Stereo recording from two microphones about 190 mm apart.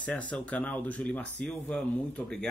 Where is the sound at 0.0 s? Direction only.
5° left (ahead or behind).